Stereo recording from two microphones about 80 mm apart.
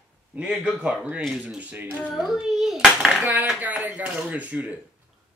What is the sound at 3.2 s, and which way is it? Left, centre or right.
Speech, right.